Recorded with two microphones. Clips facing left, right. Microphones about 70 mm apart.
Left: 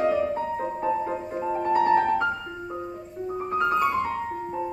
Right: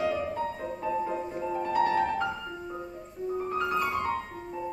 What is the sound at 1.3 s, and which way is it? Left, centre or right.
Music, left.